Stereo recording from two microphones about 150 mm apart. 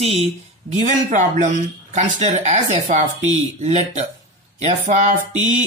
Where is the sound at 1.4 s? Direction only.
55° right (ahead or behind).